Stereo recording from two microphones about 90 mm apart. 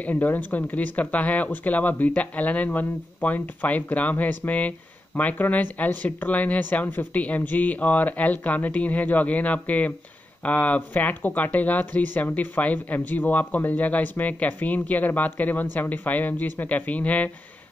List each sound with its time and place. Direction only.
0.0 s speech: 20° left (ahead or behind)